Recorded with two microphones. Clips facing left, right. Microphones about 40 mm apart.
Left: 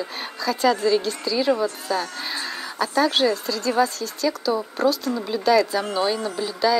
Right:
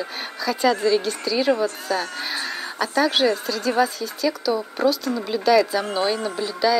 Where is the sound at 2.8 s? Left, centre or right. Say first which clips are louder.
Even; centre.